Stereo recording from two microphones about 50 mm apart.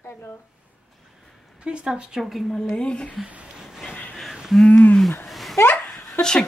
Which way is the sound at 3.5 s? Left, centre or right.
Centre.